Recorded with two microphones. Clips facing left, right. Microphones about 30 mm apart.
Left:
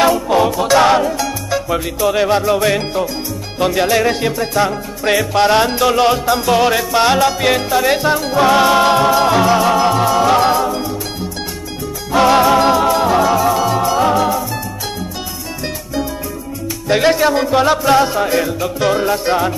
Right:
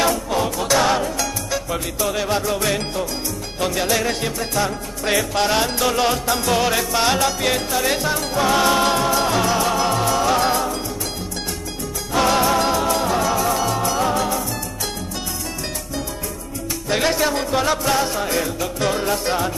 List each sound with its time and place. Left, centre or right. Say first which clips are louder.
0.3 s music: left 7 dB; left
1.0 s music: left 5 dB; centre
12.1 s music: left 7 dB; centre
16.9 s music: left 7 dB; centre